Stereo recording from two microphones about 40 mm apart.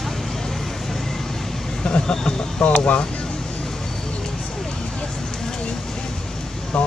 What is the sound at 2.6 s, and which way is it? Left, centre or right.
Speech, left.